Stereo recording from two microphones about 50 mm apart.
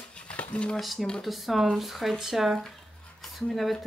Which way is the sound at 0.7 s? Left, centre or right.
Centre.